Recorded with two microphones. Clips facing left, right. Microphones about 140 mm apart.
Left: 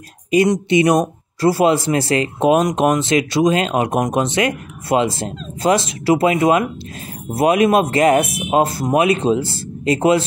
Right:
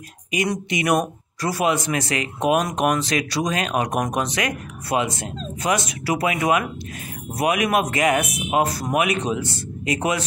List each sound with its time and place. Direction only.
0.5 s speech: 30° left (ahead or behind)